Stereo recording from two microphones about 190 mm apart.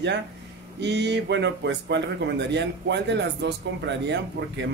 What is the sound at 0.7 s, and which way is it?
Speech, 65° right (ahead or behind).